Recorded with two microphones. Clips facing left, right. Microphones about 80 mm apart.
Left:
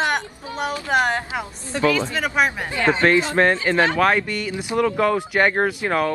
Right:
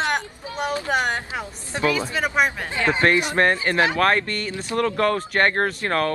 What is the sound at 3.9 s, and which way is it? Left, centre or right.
Speech, centre.